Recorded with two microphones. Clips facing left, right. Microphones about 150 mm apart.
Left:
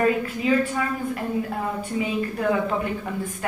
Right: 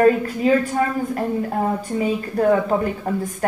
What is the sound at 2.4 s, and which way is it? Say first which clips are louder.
Speech: right 7 dB; 40° right (ahead or behind).